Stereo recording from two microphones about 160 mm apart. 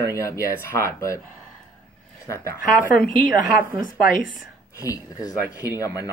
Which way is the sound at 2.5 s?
60° left (ahead or behind).